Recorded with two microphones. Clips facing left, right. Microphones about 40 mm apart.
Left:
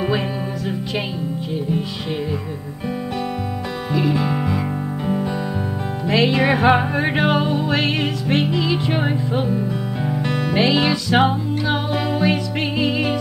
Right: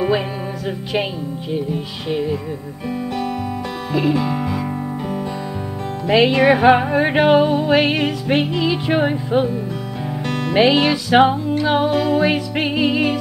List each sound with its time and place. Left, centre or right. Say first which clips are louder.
1.7 s music: even; centre
4.1 s music: right 1 dB; centre
6.0 s music: right 4 dB; centre
10.2 s music: right 2 dB; centre
10.5 s music: right 4 dB; centre
11.9 s music: right 4 dB; centre
12.2 s music: right 2 dB; centre